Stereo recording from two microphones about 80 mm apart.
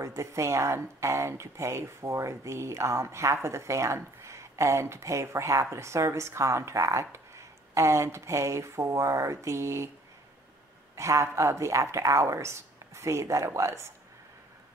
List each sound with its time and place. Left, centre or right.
0.0 s speech: right
11.0 s speech: right